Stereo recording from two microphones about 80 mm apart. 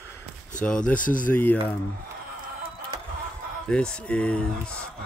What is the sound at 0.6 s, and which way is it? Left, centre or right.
Speech, centre.